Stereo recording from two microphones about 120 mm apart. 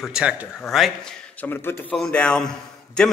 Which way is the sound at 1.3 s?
15° left (ahead or behind).